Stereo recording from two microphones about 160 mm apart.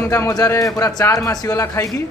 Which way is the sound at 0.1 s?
20° left (ahead or behind).